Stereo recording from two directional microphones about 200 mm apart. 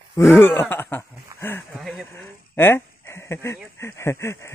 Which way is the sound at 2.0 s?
10° left (ahead or behind).